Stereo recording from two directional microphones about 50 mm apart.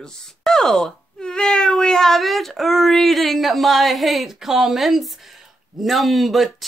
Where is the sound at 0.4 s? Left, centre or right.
Centre.